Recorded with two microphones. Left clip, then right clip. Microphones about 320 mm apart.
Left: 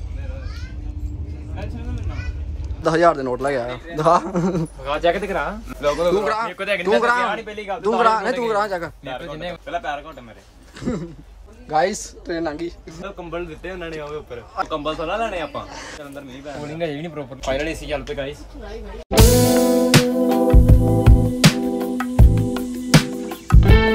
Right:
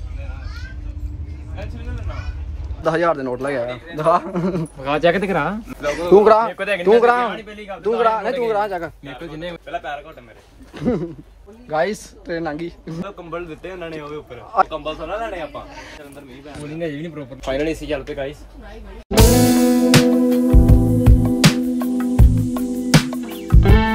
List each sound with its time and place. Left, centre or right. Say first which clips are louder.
2.8 s a man's voice: left 2 dB; centre
4.8 s speech: right 3 dB; right
5.9 s a man's voice: right 6 dB; centre
10.8 s a man's voice: right 6 dB; centre
14.8 s speech: left 2 dB; left
15.7 s speech: left 2 dB; centre
17.5 s a man's voice: right 2 dB; centre
19.0 s music: right 1 dB; centre